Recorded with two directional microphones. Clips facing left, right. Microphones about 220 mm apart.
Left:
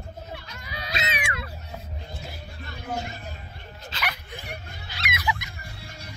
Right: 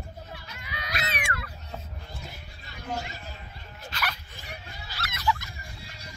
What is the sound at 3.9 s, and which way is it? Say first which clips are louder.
Dog: left 1 dB; 25° left (ahead or behind).